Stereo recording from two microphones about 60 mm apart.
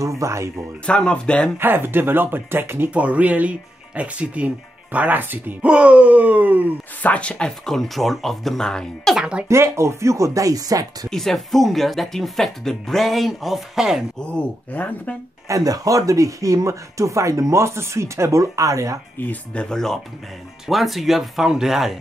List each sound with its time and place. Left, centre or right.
0.0 s speech: right
0.8 s speech: centre
1.6 s speech: right
2.9 s speech: right
5.7 s speech: centre
7.0 s speech: left
7.6 s speech: centre
9.5 s speech: right
11.1 s speech: centre
14.3 s speech: left
15.4 s speech: right
19.2 s speech: left
19.5 s speech: centre
20.6 s speech: centre